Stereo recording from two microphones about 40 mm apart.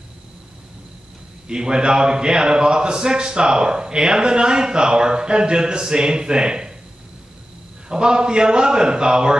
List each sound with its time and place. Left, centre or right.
1.5 s a man's voice: right
7.9 s a man's voice: centre